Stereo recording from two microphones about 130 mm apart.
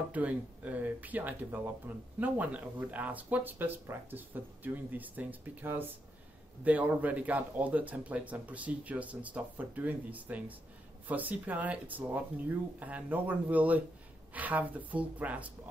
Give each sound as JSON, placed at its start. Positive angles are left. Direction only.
{"t": 0.1, "sound": "speech", "side_deg": -10}